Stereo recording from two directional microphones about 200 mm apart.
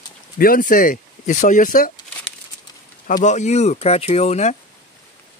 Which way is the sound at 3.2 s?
35° left (ahead or behind).